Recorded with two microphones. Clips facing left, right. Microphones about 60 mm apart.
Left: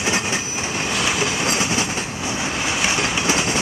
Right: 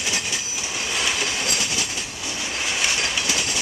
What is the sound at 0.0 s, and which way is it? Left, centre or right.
Train, left.